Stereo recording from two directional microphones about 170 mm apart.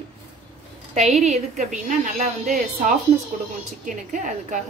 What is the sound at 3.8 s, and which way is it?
Speech, 45° right (ahead or behind).